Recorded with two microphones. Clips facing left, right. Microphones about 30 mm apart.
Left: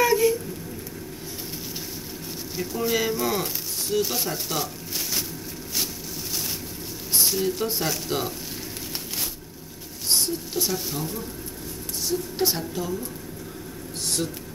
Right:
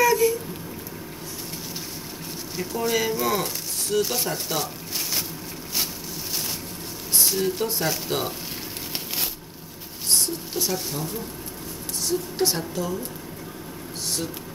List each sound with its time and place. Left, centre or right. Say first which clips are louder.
0.1 s a sound: even; centre
2.5 s speech: right 1 dB; centre
7.3 s speech: right 1 dB; centre
10.0 s a sound: even; centre
10.7 s speech: even; centre
12.4 s speech: right 1 dB; centre